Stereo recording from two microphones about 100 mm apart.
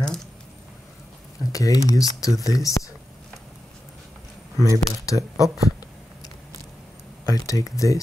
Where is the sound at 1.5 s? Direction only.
35° left (ahead or behind).